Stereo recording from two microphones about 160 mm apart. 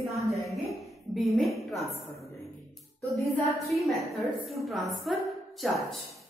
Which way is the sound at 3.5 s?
Centre (ahead or behind).